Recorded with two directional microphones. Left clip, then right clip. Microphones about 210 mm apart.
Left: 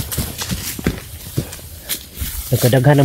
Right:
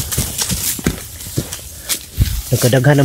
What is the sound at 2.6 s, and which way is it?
Speech, centre (ahead or behind).